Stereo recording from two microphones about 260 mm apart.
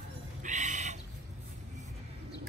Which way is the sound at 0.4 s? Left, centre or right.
Right.